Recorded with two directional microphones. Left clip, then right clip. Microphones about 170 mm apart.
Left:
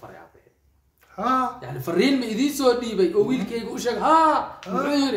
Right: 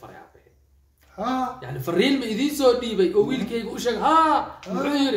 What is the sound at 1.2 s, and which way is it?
Speech, 30° left (ahead or behind).